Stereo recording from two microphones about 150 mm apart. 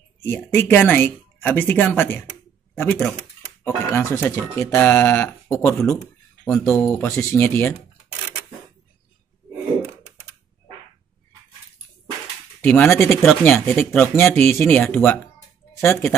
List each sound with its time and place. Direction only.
0.2 s speech: 15° left (ahead or behind)
12.6 s speech: 15° left (ahead or behind)